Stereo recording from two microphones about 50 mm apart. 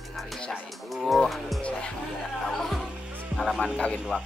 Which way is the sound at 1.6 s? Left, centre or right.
Centre.